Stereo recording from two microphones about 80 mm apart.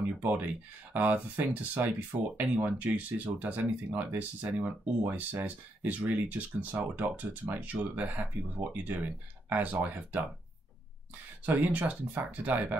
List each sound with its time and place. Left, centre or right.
0.2 s speech: right
11.4 s speech: centre